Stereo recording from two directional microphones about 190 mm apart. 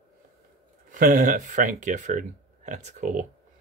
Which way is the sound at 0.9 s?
45° right (ahead or behind).